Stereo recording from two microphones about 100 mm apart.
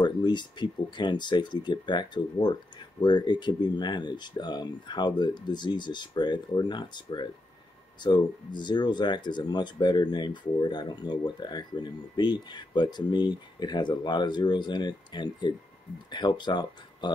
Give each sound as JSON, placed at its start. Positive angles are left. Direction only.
{"t": 0.0, "sound": "speech", "side_deg": 50}